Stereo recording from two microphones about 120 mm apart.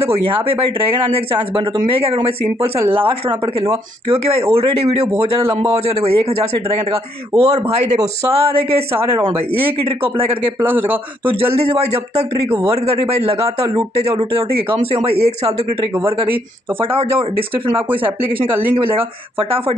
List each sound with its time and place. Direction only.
0.0 s a man's voice: 50° right (ahead or behind); by 8.0 s 70° right (ahead or behind)
8.3 s a man's voice: 55° right (ahead or behind)
11.5 s a man's voice: 60° right (ahead or behind)